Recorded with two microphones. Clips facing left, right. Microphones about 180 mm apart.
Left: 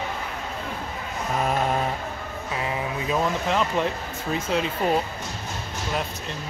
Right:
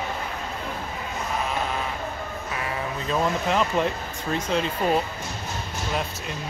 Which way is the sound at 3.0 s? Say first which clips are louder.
Right 1 dB; 5° left (ahead or behind).